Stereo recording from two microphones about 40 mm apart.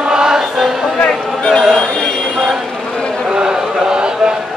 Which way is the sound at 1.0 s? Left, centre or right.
Left.